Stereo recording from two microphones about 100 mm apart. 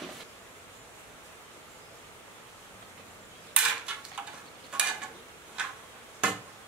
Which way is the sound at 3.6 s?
10° right (ahead or behind).